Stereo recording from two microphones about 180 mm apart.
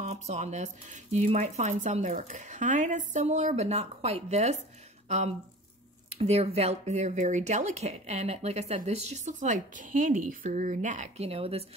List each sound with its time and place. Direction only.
0.0 s speech: 40° right (ahead or behind)